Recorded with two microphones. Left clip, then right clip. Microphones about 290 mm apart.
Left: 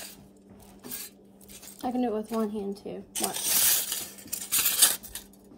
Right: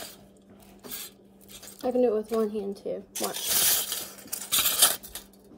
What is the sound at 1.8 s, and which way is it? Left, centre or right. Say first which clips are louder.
A woman's voice: right 5 dB; centre.